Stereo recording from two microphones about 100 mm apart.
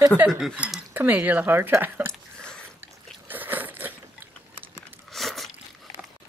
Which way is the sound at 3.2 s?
20° right (ahead or behind).